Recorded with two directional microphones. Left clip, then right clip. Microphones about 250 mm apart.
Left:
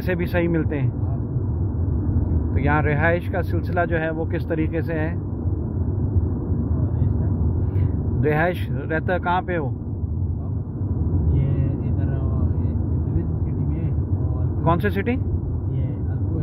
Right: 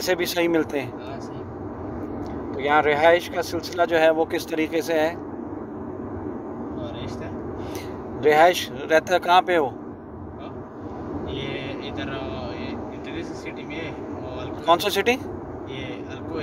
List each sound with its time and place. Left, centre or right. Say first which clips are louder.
0.0 s speech: right 1 dB; right
2.6 s speech: right 4 dB; centre
8.2 s speech: right 6 dB; centre
14.6 s speech: right 3 dB; centre